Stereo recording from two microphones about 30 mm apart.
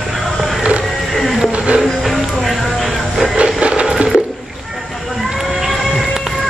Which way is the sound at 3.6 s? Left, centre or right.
Right.